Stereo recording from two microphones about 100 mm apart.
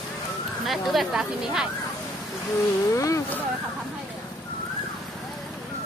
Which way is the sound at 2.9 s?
30° left (ahead or behind).